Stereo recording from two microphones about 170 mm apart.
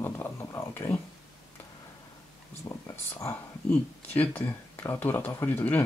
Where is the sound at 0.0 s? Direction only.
15° left (ahead or behind).